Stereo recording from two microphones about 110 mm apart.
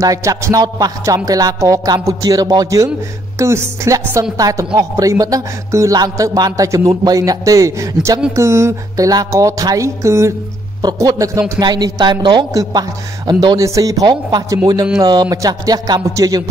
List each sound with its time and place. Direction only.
0.0 s speech: 30° right (ahead or behind)
3.3 s music: 25° right (ahead or behind)
4.7 s speech: 30° right (ahead or behind)
8.3 s music: 25° right (ahead or behind)
10.8 s speech: 35° right (ahead or behind)
11.6 s speech: 40° right (ahead or behind)
13.7 s speech: 30° right (ahead or behind)